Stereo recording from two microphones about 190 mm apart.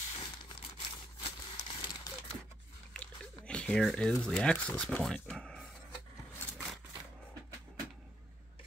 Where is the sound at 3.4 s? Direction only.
5° left (ahead or behind).